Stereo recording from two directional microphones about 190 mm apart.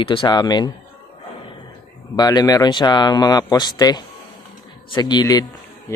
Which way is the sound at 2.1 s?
20° left (ahead or behind).